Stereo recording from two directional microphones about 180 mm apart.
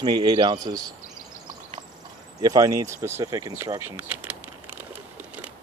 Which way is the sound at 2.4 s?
20° right (ahead or behind).